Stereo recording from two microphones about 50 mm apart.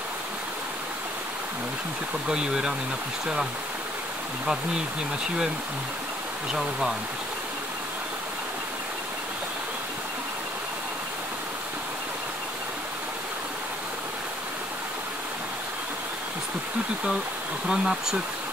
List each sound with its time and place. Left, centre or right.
2.2 s speech: centre
17.6 s speech: centre